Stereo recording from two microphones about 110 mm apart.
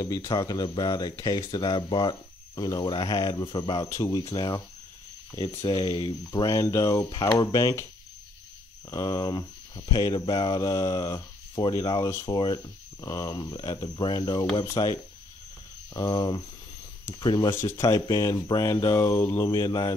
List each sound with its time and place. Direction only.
0.0 s speech: 35° left (ahead or behind)
3.1 s speech: 30° left (ahead or behind)
5.6 s speech: 40° left (ahead or behind)
7.1 s speech: 45° left (ahead or behind)
7.3 s speech: 30° left (ahead or behind)
8.9 s speech: 35° left (ahead or behind)
17.5 s speech: 25° left (ahead or behind)